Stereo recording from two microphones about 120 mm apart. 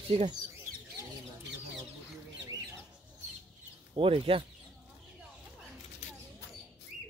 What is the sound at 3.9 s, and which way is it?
Speech, 50° right (ahead or behind).